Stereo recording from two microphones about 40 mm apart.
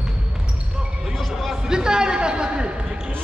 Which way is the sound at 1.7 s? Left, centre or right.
Centre.